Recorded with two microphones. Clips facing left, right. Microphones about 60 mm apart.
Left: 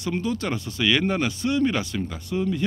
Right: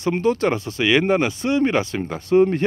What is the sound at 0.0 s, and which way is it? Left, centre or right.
Speech, right.